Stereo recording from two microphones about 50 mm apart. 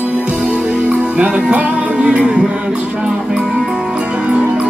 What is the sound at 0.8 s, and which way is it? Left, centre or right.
Music, centre.